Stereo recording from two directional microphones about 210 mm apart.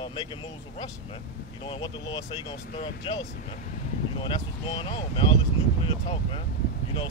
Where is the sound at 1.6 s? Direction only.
25° left (ahead or behind).